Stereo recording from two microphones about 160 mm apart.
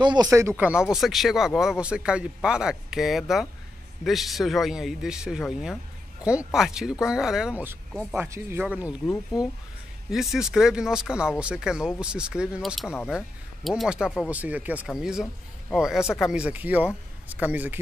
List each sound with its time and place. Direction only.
0.0 s speech: 25° right (ahead or behind)
0.6 s speech: 5° right (ahead or behind)
9.0 s speech: 15° left (ahead or behind)
10.1 s speech: 5° right (ahead or behind)